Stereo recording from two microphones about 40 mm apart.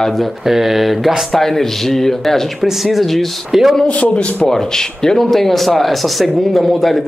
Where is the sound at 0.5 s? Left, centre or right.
Centre.